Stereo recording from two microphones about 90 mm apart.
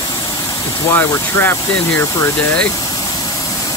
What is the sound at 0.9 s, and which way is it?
Speech, 25° left (ahead or behind).